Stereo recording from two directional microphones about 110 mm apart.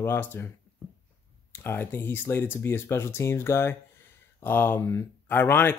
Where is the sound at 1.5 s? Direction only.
20° left (ahead or behind).